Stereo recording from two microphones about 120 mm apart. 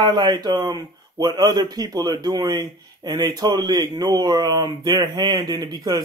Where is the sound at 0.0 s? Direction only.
35° right (ahead or behind).